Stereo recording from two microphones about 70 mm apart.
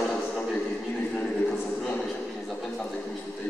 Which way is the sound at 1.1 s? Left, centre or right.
Left.